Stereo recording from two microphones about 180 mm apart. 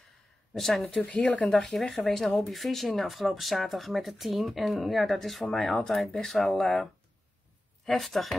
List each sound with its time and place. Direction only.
0.6 s speech: centre (ahead or behind)